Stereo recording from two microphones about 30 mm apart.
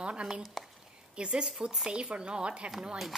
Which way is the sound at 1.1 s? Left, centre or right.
Right.